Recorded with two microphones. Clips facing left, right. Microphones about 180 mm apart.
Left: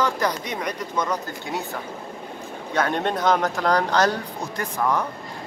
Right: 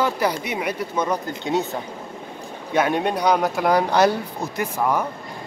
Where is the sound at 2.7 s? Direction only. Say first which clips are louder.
Right 3 dB; 15° right (ahead or behind).